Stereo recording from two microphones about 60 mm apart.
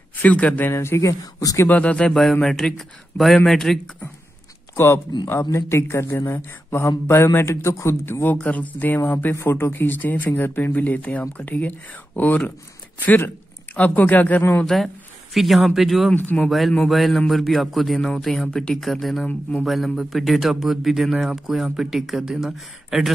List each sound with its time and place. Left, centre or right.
0.1 s speech: left
0.7 s speech: left
1.2 s speech: left
1.7 s a man's voice: left
4.7 s speech: left
8.0 s speech: left
8.4 s speech: left
14.7 s speech: centre
16.2 s speech: left
16.4 s speech: centre
18.8 s speech: centre